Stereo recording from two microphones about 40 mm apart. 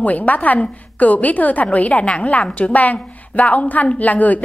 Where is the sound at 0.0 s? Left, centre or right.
Left.